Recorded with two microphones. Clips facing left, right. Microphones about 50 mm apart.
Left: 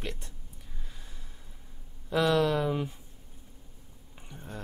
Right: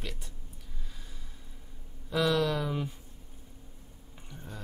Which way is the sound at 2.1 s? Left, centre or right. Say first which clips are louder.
Left 2 dB; centre.